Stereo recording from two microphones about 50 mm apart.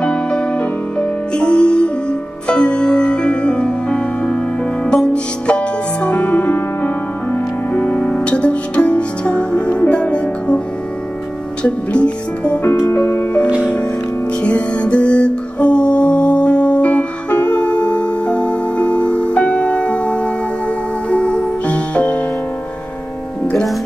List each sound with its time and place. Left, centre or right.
0.0 s music: centre
6.0 s music: left
11.6 s music: left
12.6 s music: left
12.9 s music: left
13.6 s music: left